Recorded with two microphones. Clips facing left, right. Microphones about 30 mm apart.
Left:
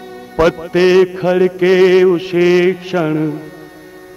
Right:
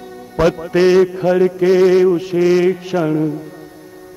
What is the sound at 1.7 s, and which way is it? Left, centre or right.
Mantra, left.